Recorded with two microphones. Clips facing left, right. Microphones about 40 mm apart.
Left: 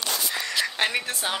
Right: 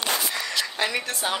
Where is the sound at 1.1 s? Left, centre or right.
Centre.